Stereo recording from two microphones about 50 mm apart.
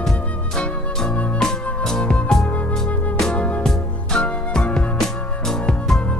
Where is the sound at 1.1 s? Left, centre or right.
Left.